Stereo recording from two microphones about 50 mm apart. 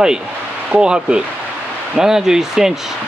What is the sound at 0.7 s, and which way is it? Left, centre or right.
Speech, centre.